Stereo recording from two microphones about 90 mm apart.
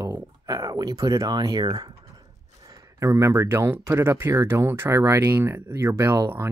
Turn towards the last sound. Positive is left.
turn(degrees=-30)  # may be behind; listen again after turning